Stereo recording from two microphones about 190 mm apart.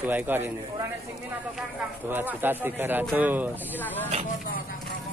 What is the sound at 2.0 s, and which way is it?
Speech, 10° right (ahead or behind).